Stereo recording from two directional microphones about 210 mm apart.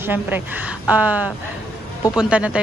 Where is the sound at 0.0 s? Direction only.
10° right (ahead or behind).